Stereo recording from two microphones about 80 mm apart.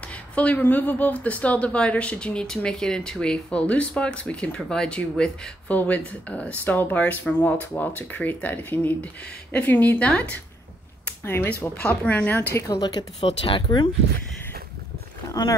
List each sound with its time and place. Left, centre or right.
0.1 s a woman's voice: centre
5.7 s speech: centre
11.1 s a sound: left
11.7 s speech: centre
12.8 s speech: left
15.4 s speech: left